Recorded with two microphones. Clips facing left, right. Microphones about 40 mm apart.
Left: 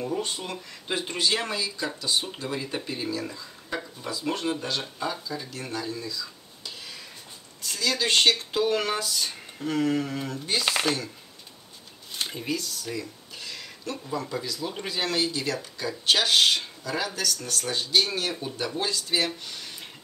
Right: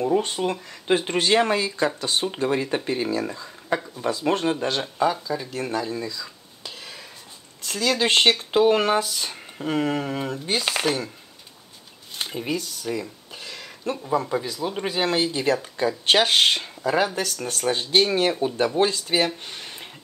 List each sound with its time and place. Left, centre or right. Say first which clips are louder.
0.0 s speech: right 8 dB; right
5.1 s speech: right 6 dB; centre
5.5 s speech: right 6 dB; right
10.6 s speech: even; centre
12.4 s speech: right 5 dB; centre; by 19.9 s right